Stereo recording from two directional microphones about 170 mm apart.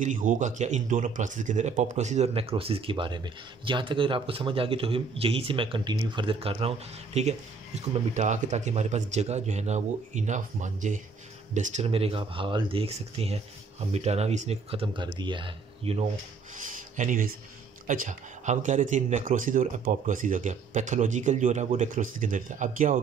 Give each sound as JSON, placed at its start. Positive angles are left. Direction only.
{"t": 0.0, "sound": "speech", "side_deg": -50}
{"t": 16.5, "sound": "speech", "side_deg": -50}